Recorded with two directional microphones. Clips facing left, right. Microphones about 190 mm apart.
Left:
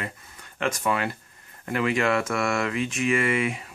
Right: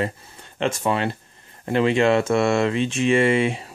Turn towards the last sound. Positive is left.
turn(degrees=-30)  # may be behind; listen again after turning